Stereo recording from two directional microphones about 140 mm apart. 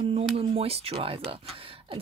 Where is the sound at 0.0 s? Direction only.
45° right (ahead or behind).